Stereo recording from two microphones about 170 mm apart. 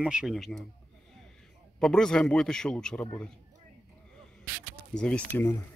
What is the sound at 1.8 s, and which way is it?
A man's voice, 5° left (ahead or behind).